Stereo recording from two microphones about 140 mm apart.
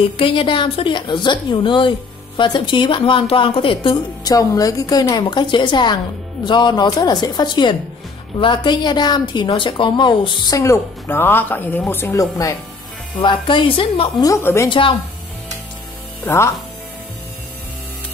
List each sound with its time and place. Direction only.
0.2 s a woman's voice: 40° left (ahead or behind)
13.2 s a woman's voice: 35° left (ahead or behind)
14.2 s a woman's voice: 20° left (ahead or behind)
14.7 s a woman's voice: 35° left (ahead or behind)